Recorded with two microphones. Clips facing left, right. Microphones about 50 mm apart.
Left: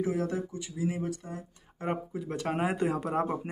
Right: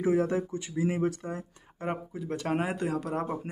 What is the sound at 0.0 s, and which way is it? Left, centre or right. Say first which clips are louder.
Speech: right 4 dB; right.